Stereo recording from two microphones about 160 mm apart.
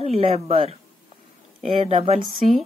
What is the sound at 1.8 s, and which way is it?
Speech, 40° right (ahead or behind).